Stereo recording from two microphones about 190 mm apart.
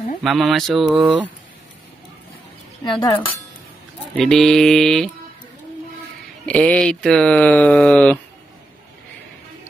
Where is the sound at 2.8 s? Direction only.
25° left (ahead or behind).